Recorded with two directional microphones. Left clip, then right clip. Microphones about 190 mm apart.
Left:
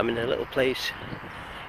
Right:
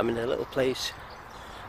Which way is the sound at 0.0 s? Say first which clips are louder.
Left 2 dB; 10° right (ahead or behind).